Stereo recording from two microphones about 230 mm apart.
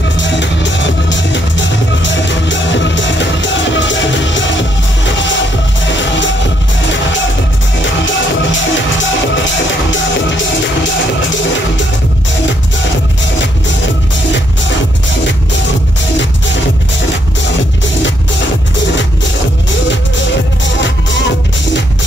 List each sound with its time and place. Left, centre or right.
0.2 s music: left
7.8 s music: left